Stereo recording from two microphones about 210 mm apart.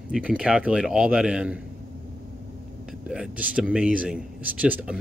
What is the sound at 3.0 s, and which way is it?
Speech, 5° right (ahead or behind).